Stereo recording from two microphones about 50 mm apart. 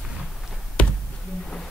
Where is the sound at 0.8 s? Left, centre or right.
Left.